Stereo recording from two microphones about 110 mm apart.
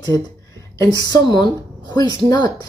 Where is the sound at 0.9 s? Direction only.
35° left (ahead or behind).